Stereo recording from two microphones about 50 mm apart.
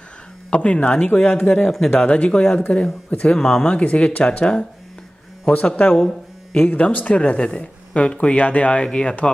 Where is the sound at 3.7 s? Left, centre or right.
Left.